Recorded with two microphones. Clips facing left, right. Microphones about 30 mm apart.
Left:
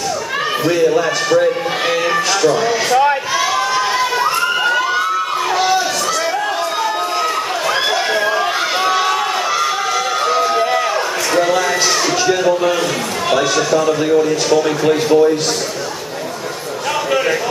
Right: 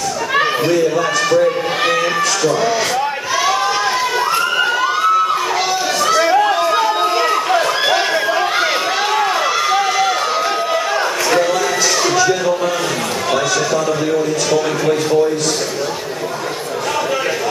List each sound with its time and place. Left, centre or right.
0.7 s a man's voice: centre
6.1 s chatter: centre
12.2 s a sound: centre
13.7 s a man's voice: centre